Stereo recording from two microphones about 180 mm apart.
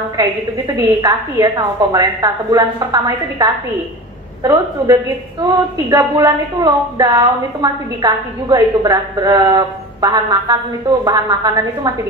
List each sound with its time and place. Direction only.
0.7 s a woman's voice: 20° right (ahead or behind)